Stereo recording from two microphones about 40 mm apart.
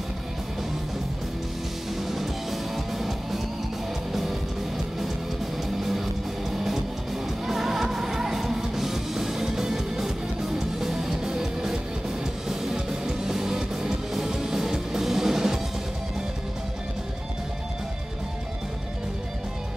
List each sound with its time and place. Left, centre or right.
2.0 s music: centre
5.8 s music: centre